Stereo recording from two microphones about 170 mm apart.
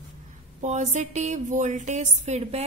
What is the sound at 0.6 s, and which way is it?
Speech, 45° right (ahead or behind).